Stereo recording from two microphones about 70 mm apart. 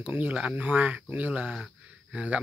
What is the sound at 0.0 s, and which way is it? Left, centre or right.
Speech, right.